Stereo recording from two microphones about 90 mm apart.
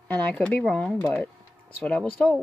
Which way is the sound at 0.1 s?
15° left (ahead or behind).